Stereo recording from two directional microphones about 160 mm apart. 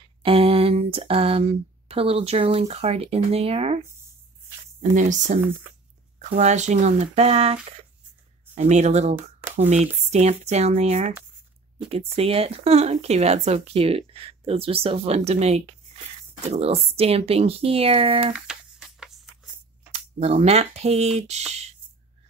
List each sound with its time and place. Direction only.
0.2 s speech: 35° right (ahead or behind)
4.9 s speech: 50° right (ahead or behind)
8.5 s speech: 45° right (ahead or behind)
18.3 s a sound: 5° right (ahead or behind)
19.9 s speech: 40° right (ahead or behind)